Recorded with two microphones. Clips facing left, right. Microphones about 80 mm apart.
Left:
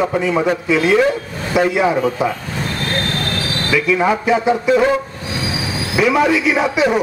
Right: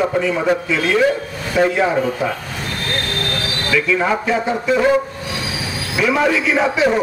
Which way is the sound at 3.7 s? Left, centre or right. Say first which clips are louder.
Left 2 dB; centre.